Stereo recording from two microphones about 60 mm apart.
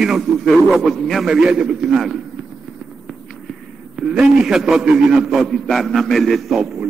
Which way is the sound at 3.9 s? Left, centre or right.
Centre.